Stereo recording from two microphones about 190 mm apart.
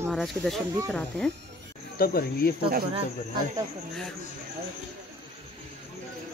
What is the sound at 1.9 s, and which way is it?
Speech, 50° left (ahead or behind).